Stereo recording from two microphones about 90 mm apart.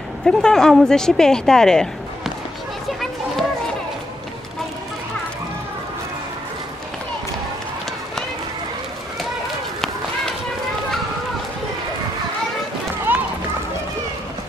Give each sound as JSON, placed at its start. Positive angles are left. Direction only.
{"t": 0.2, "sound": "speech", "side_deg": 5}
{"t": 13.1, "sound": "run", "side_deg": -20}